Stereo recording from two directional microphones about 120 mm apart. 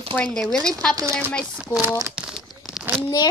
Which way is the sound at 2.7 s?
10° right (ahead or behind).